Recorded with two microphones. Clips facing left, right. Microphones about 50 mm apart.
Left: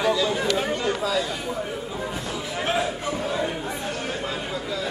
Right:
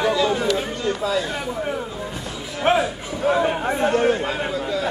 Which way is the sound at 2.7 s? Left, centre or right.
Right.